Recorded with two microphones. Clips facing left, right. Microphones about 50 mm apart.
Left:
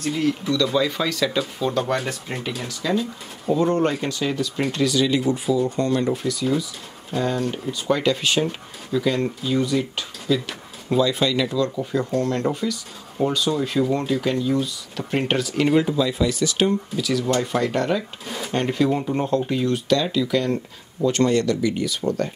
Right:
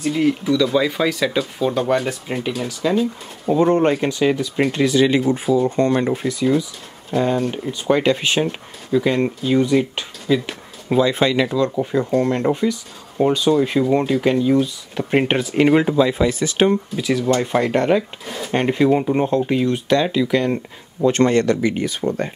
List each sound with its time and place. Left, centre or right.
0.0 s speech: centre; by 18.0 s right
18.2 s speech: centre
18.5 s speech: right